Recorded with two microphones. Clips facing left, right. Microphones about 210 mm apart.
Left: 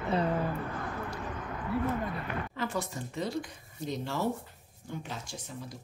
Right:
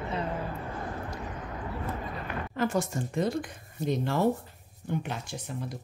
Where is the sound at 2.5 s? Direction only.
45° right (ahead or behind).